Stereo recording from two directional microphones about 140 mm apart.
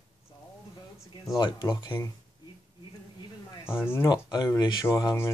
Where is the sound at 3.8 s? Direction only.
20° left (ahead or behind).